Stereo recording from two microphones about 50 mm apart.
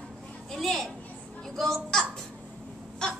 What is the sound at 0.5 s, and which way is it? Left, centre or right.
A woman's voice, centre.